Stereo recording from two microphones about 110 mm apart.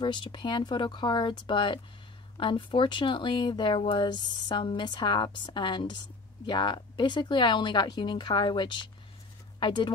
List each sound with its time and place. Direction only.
0.0 s speech: 45° left (ahead or behind)